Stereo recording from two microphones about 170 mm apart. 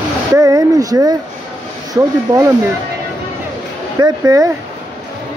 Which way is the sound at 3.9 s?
20° right (ahead or behind).